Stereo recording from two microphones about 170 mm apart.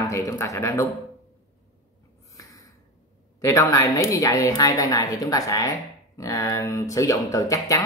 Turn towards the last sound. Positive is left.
turn(degrees=20)  # may be behind; listen again after turning